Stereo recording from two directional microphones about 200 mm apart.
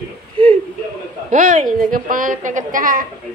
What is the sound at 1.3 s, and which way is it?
A woman's voice, 40° right (ahead or behind).